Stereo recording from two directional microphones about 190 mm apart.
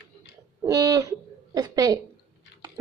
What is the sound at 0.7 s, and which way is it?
Owl, 20° right (ahead or behind).